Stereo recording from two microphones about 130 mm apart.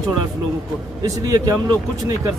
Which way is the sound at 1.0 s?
30° right (ahead or behind).